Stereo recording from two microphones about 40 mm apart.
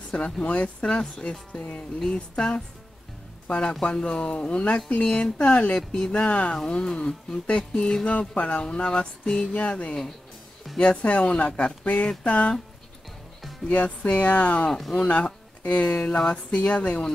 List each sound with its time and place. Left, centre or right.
0.1 s speech: left
5.8 s speech: centre
6.1 s speech: left
6.7 s speech: centre
7.0 s speech: left
13.7 s speech: left
14.7 s speech: centre
15.0 s speech: left